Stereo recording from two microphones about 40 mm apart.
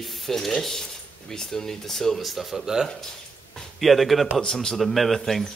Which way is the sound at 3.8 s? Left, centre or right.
Centre.